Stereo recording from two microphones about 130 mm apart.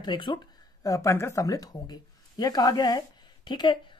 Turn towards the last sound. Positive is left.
turn(degrees=35)  # may be behind; listen again after turning